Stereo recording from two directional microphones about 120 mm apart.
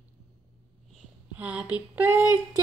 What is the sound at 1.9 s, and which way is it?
Child singing, 15° right (ahead or behind).